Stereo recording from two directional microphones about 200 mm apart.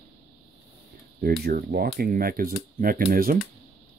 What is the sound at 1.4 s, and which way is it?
Speech, 50° right (ahead or behind).